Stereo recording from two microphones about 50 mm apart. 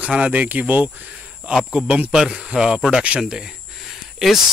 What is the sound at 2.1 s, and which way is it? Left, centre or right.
Speech, centre.